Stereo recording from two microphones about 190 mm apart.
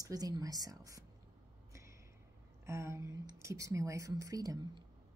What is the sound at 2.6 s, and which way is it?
Speech, 15° right (ahead or behind).